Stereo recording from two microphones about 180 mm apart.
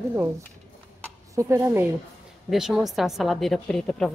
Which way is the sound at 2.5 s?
Centre (ahead or behind).